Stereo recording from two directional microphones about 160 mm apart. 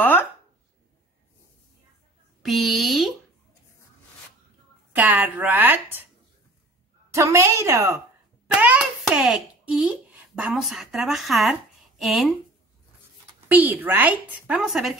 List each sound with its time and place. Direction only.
0.0 s a sound: 10° left (ahead or behind)
2.4 s a sound: centre (ahead or behind)
4.9 s a woman's voice: 10° right (ahead or behind)
7.2 s a woman's voice: 20° right (ahead or behind)
8.5 s hands: 10° right (ahead or behind)
9.1 s speech: 5° right (ahead or behind)
13.5 s a woman's voice: 10° right (ahead or behind)